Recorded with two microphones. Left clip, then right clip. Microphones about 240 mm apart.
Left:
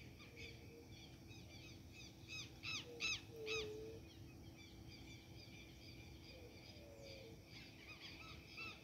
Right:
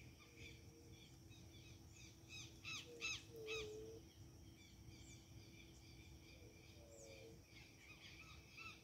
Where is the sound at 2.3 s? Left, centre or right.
Left.